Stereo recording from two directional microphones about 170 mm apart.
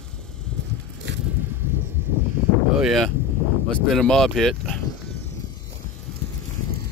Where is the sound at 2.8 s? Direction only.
Centre (ahead or behind).